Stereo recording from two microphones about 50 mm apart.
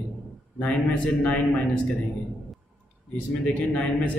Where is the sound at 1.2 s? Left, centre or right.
Left.